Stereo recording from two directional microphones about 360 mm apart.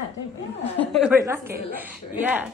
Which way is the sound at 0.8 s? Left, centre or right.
Centre.